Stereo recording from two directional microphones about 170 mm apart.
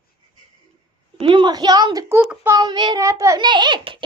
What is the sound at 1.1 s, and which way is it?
A child's voice, 30° right (ahead or behind).